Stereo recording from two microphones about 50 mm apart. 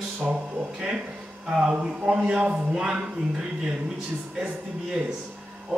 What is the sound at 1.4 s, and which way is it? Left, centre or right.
Speech, centre.